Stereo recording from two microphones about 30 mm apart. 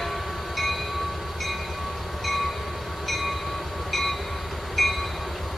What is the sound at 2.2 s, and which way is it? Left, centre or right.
Train, centre.